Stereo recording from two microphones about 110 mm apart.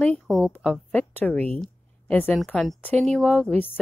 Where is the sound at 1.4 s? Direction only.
70° right (ahead or behind).